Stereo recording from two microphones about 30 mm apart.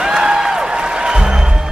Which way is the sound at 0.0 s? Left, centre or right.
Right.